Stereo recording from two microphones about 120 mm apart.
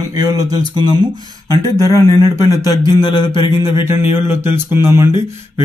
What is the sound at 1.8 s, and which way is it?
Speech, 30° left (ahead or behind).